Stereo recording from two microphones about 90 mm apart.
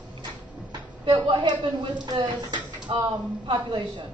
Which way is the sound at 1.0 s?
65° right (ahead or behind).